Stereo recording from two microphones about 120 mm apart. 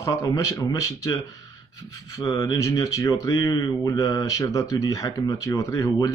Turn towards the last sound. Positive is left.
turn(degrees=30)  # may be behind; listen again after turning